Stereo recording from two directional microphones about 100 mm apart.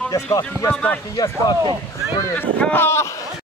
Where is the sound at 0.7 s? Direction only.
15° left (ahead or behind).